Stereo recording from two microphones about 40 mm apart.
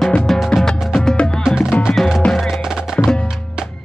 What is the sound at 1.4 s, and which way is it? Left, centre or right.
Music, centre.